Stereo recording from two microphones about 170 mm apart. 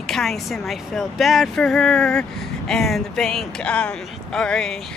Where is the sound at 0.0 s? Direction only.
Centre (ahead or behind).